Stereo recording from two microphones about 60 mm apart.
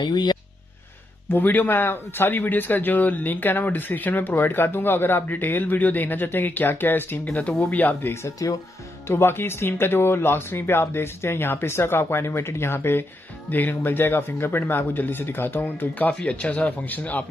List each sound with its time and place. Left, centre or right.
1.3 s a man's voice: left
8.4 s speech: left
9.0 s a man's voice: left
16.3 s a man's voice: left